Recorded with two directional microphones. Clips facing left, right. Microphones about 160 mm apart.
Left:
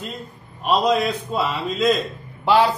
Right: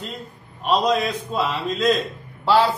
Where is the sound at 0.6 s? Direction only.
5° left (ahead or behind).